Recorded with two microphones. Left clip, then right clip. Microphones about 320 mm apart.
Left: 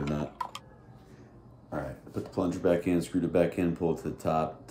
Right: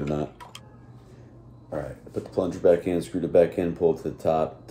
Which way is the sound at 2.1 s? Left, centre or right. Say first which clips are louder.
Right 5 dB; centre.